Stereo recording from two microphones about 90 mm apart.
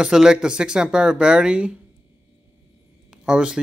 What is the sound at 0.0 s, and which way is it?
Speech, 5° right (ahead or behind).